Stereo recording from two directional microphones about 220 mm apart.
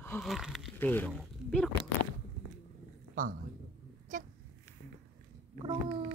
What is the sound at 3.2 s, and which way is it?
Speech, 40° right (ahead or behind).